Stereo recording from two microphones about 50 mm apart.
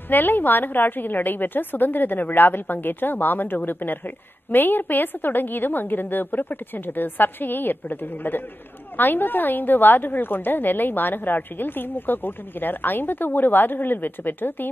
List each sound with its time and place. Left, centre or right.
0.1 s a woman's voice: left